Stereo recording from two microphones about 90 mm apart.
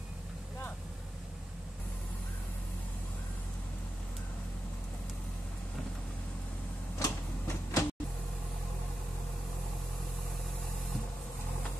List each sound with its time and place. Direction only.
7.0 s printer: 40° left (ahead or behind)